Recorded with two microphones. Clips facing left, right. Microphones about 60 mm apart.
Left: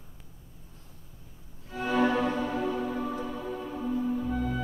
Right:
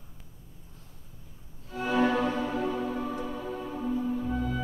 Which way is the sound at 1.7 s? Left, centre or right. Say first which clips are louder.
Even; centre.